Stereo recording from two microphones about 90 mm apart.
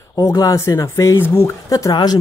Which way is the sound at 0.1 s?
40° left (ahead or behind).